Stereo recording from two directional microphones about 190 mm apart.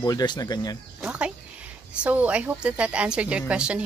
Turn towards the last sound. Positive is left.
turn(degrees=-5)  # may be behind; listen again after turning